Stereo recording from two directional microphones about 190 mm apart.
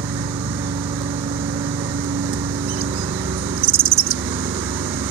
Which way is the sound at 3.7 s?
30° right (ahead or behind).